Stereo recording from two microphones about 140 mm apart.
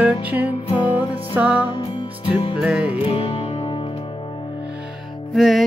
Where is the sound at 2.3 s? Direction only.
35° left (ahead or behind).